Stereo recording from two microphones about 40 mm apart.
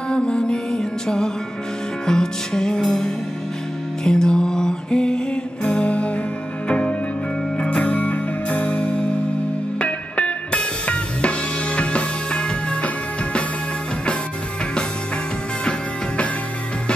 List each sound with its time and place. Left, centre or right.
0.1 s music: left
7.8 s music: left